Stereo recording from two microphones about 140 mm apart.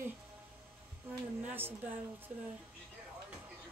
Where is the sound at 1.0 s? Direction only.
15° right (ahead or behind).